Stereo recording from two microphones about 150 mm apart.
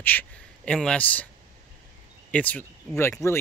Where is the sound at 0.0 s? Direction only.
10° left (ahead or behind).